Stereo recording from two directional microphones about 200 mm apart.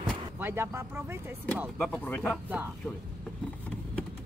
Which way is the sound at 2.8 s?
5° left (ahead or behind).